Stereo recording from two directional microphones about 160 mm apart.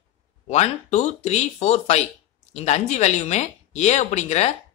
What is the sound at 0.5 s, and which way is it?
Speech, 45° left (ahead or behind).